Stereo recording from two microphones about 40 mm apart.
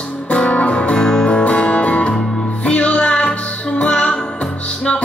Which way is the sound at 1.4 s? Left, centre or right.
Left.